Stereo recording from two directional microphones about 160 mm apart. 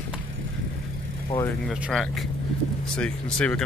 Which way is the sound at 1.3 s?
35° left (ahead or behind).